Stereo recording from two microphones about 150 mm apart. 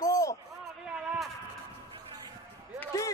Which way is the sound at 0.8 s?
5° right (ahead or behind).